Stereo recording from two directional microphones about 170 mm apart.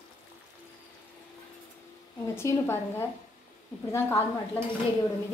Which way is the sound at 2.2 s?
15° left (ahead or behind).